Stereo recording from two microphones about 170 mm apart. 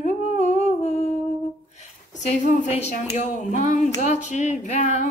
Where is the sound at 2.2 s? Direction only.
45° left (ahead or behind).